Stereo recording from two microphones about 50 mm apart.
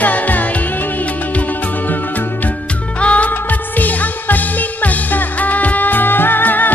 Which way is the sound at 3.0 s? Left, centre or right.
Left.